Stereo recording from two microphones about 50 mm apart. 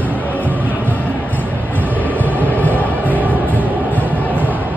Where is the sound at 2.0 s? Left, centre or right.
Left.